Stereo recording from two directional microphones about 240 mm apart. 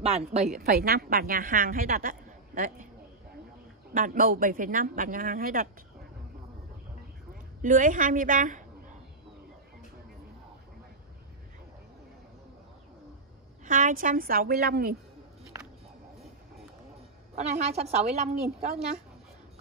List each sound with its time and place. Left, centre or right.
0.0 s a woman's voice: right
0.6 s a woman's voice: right
3.9 s a woman's voice: right
7.6 s a woman's voice: right
13.7 s a woman's voice: right
17.4 s a woman's voice: right